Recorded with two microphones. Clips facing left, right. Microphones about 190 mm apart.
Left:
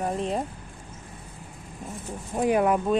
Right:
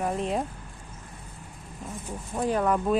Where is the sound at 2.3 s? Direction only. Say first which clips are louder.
Left 3 dB; 15° left (ahead or behind).